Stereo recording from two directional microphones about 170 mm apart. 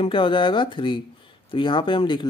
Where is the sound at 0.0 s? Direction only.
30° left (ahead or behind).